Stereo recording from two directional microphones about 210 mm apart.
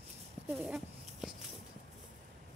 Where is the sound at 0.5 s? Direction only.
5° right (ahead or behind).